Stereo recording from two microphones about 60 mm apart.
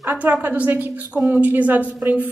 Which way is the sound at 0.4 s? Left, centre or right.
Right.